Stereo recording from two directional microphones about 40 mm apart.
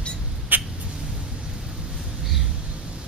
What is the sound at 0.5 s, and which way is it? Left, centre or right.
Rodents, right.